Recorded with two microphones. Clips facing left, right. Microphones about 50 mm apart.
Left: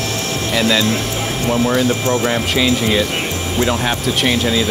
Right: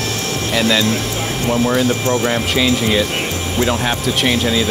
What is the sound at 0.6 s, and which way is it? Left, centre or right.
Speech, left.